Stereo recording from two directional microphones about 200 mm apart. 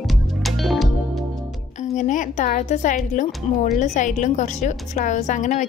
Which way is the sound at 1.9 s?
40° left (ahead or behind).